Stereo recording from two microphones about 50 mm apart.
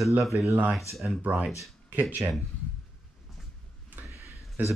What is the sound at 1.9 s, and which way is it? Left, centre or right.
Speech, right.